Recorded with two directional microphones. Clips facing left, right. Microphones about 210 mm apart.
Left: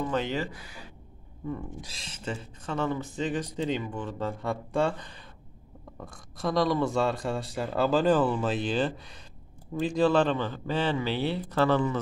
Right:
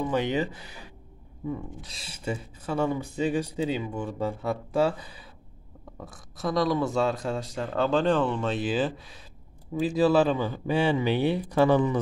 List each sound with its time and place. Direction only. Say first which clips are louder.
0.0 s speech: right 3 dB; 15° right (ahead or behind)
1.9 s speech: right 5 dB; 5° right (ahead or behind)